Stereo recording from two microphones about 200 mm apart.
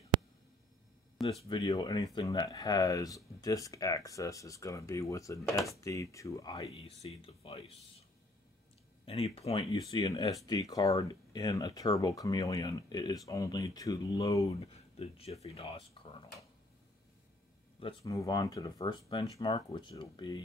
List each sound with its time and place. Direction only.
1.5 s speech: 20° left (ahead or behind)
7.0 s speech: 30° left (ahead or behind)
9.0 s speech: 30° left (ahead or behind)
14.6 s speech: 30° left (ahead or behind)
18.0 s speech: 20° left (ahead or behind)